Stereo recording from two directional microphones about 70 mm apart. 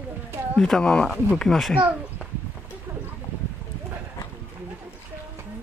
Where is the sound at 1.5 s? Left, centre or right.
Centre.